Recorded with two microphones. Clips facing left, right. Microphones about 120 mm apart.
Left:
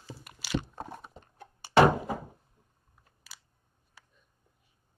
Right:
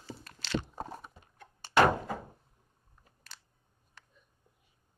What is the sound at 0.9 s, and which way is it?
Horse, centre (ahead or behind).